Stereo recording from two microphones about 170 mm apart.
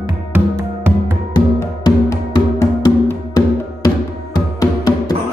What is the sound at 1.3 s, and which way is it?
Music, 25° left (ahead or behind).